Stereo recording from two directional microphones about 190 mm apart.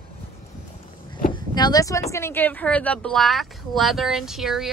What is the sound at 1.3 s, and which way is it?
Vehicle, 20° left (ahead or behind).